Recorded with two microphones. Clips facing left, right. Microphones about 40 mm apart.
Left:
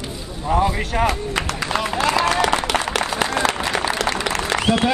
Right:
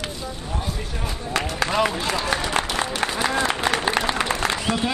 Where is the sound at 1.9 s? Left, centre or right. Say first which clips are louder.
Left 6 dB; left.